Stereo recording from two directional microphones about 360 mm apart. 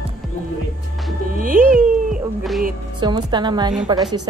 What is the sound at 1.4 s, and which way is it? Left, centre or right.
Speech, right.